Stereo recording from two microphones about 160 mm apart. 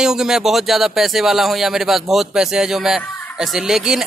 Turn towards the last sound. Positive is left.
turn(degrees=-5)  # may be behind; listen again after turning